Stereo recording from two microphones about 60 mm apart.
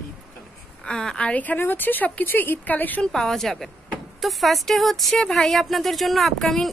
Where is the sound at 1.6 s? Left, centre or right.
Left.